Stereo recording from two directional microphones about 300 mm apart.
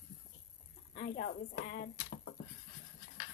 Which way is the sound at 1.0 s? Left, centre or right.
Left.